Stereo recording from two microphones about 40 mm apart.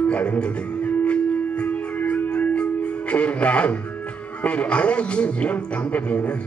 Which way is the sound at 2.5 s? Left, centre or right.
Left.